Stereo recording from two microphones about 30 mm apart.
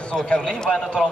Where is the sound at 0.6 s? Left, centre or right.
Centre.